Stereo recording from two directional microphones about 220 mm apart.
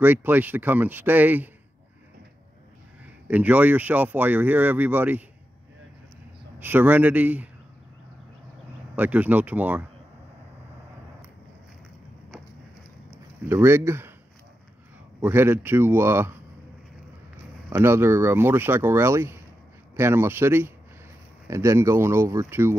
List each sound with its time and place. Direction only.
0.0 s speech: 10° right (ahead or behind)
3.3 s speech: 5° right (ahead or behind)
6.6 s speech: 10° right (ahead or behind)
8.9 s speech: 5° right (ahead or behind)
13.5 s speech: 10° right (ahead or behind)
15.2 s speech: 10° right (ahead or behind)
17.6 s speech: 10° right (ahead or behind)